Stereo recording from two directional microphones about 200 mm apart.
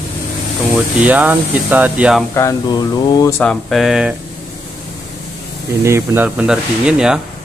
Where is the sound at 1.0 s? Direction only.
10° right (ahead or behind).